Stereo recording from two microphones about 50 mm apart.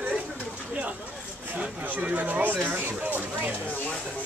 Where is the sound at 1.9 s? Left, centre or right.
Right.